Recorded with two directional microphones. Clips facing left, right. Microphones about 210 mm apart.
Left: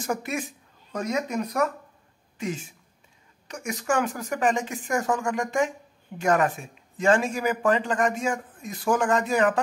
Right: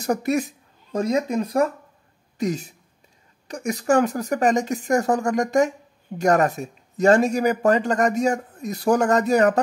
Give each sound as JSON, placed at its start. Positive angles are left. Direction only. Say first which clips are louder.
{"t": 0.0, "sound": "speech", "louder": "right 7 dB", "side_deg": -40}